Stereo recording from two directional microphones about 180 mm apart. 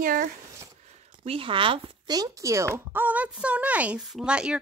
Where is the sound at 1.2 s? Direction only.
30° right (ahead or behind); by 4.6 s 5° right (ahead or behind).